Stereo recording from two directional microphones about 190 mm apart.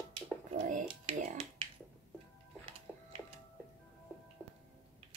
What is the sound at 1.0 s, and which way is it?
Speech, 35° right (ahead or behind).